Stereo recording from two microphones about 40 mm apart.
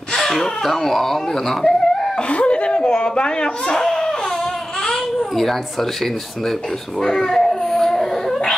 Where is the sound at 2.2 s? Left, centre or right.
Left.